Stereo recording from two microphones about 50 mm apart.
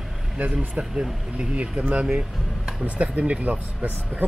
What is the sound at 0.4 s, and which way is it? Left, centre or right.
Speech, right.